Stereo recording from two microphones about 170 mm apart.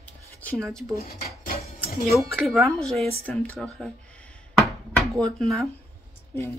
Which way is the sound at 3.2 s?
10° left (ahead or behind).